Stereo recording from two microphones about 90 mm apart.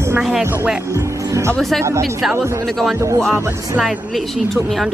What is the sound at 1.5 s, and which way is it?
Speech, 5° left (ahead or behind).